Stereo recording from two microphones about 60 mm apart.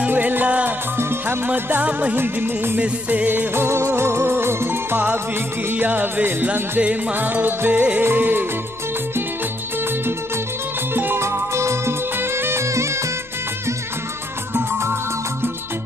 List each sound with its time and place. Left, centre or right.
0.0 s music: right
0.9 s music: right
2.1 s music: right
5.7 s music: right
8.0 s music: right
11.1 s music: right
12.6 s music: right
14.5 s music: right